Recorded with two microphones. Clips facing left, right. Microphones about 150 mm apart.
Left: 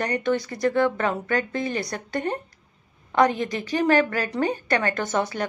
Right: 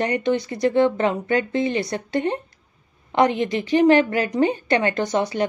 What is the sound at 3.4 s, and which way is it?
A woman's voice, 20° right (ahead or behind).